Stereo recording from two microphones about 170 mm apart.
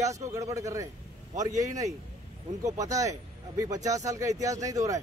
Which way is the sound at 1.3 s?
45° right (ahead or behind).